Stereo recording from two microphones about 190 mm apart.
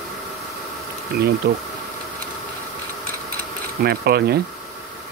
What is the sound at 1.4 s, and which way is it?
Speech, 60° right (ahead or behind).